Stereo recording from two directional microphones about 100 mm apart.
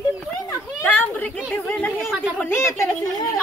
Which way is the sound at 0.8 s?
20° left (ahead or behind).